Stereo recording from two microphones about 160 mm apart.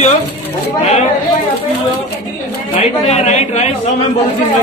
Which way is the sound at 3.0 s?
45° left (ahead or behind).